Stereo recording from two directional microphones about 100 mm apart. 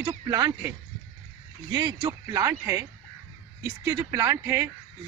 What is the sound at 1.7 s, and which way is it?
Speech, 40° right (ahead or behind).